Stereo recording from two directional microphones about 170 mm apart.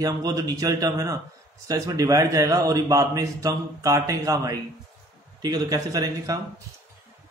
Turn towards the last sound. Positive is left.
turn(degrees=-20)  # may be behind; listen again after turning